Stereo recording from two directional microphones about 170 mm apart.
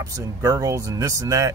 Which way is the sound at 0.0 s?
20° right (ahead or behind).